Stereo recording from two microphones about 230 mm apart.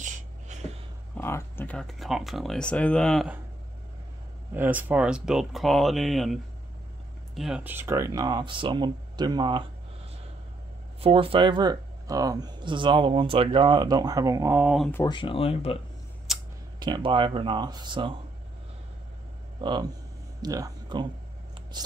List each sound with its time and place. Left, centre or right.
0.0 s a sound: right
1.1 s speech: centre
4.6 s speech: centre
11.0 s speech: right; by 14.9 s centre
14.9 s speech: centre
16.3 s a sound: centre
16.8 s speech: centre
19.6 s speech: centre